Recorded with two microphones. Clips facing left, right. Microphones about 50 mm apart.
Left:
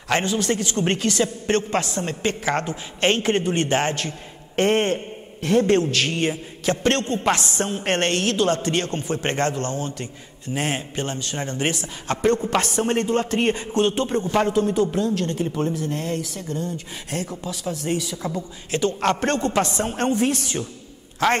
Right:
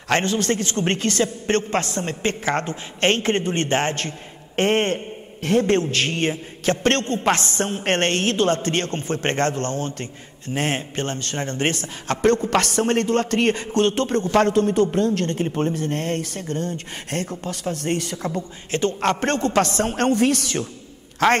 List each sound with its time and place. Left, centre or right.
0.1 s a man's voice: right
14.1 s a man's voice: centre
14.4 s speech: right